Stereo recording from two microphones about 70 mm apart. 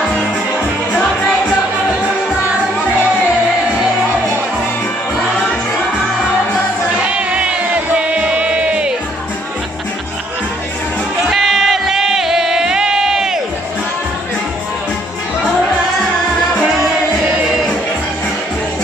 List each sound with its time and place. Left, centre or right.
7.1 s music: centre
11.2 s music: centre